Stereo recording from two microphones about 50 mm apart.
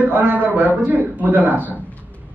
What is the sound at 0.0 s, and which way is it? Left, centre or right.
A man's voice, right.